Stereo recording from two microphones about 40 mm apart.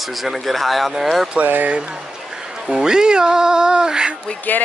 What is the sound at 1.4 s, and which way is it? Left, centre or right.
Speech, right.